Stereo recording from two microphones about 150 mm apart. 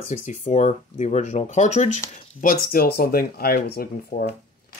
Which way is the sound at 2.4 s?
90° left.